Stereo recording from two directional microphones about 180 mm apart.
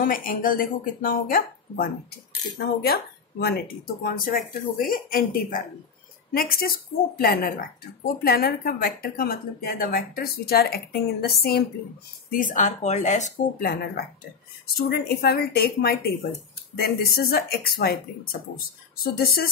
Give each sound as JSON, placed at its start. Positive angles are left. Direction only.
{"t": 0.0, "sound": "speech", "side_deg": 50}
{"t": 12.3, "sound": "speech", "side_deg": 45}
{"t": 14.8, "sound": "speech", "side_deg": 60}